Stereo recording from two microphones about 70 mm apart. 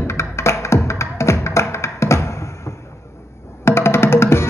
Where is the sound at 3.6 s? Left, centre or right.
Left.